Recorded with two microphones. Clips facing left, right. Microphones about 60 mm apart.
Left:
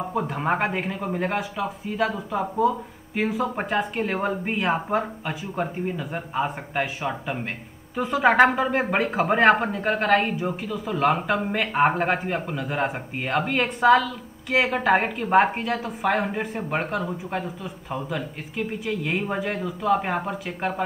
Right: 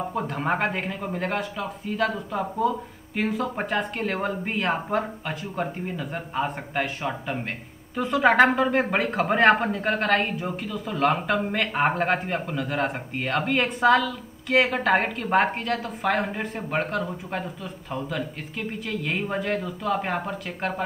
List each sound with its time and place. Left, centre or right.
0.0 s speech: centre
18.9 s speech: centre